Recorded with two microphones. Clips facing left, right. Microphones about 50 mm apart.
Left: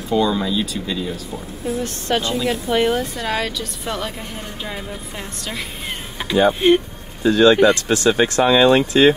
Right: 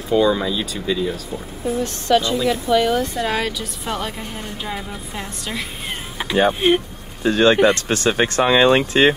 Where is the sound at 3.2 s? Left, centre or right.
Centre.